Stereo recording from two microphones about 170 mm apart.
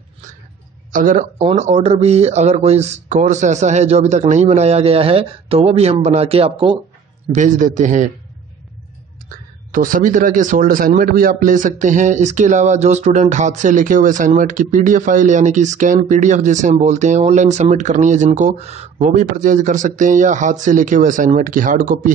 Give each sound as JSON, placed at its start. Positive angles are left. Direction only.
{"t": 0.9, "sound": "a man's voice", "side_deg": -50}
{"t": 7.3, "sound": "a man's voice", "side_deg": -50}
{"t": 9.7, "sound": "a man's voice", "side_deg": -55}